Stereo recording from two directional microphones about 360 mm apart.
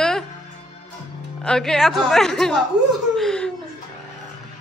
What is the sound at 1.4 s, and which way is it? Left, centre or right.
A man's voice, centre.